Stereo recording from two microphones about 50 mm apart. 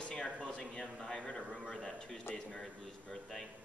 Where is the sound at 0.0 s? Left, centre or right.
Centre.